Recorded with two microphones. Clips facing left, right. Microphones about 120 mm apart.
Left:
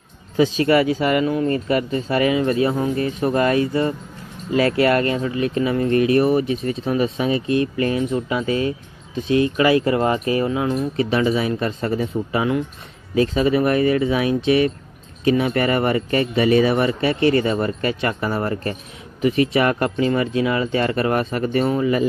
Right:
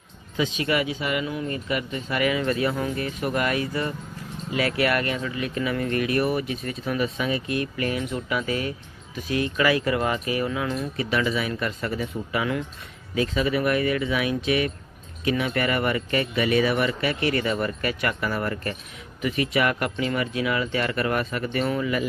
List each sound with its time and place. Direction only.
0.4 s speech: 40° left (ahead or behind)